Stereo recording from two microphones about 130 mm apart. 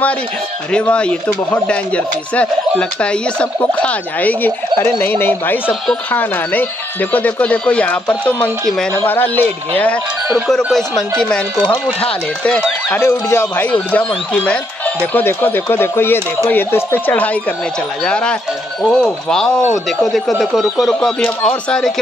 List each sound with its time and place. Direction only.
0.7 s speech: 10° left (ahead or behind)
10.3 s speech: centre (ahead or behind)
12.0 s speech: 10° left (ahead or behind)
21.2 s speech: 10° left (ahead or behind)